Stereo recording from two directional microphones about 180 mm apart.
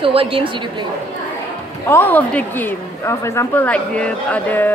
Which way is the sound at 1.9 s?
10° left (ahead or behind).